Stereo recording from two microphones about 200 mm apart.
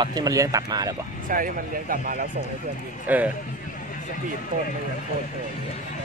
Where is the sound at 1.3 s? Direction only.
45° right (ahead or behind).